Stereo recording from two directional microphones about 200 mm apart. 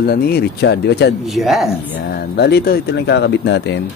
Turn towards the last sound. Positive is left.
turn(degrees=60)  # may be behind; listen again after turning